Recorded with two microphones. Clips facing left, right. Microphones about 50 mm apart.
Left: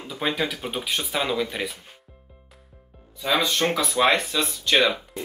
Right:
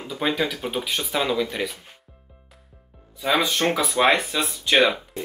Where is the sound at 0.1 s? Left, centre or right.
Centre.